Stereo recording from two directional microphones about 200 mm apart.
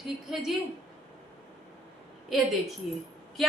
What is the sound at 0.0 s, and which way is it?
Speech, centre (ahead or behind).